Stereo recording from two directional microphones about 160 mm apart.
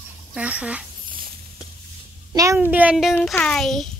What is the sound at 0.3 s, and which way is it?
Speech, 5° right (ahead or behind).